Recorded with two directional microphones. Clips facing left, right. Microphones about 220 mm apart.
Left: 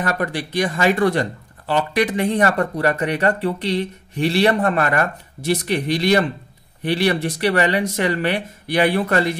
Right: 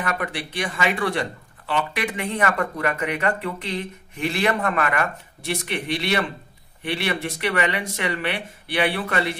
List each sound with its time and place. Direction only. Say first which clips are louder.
0.0 s speech: left 5 dB; 40° left (ahead or behind)